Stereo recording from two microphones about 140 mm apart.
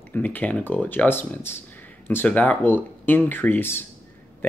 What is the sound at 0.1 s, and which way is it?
Speech, 10° left (ahead or behind).